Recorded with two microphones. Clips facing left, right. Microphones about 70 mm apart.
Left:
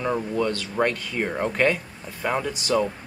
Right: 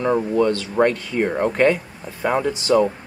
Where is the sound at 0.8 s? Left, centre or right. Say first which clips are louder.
Right 5 dB; centre.